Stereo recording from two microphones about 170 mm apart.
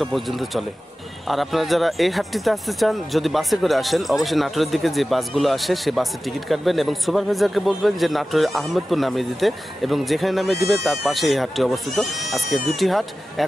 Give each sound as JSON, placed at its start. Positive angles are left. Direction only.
{"t": 0.0, "sound": "speech", "side_deg": 0}